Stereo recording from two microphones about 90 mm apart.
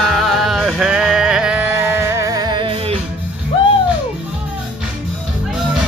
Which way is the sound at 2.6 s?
90° right.